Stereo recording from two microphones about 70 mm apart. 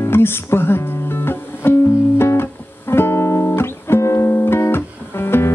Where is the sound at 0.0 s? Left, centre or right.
Left.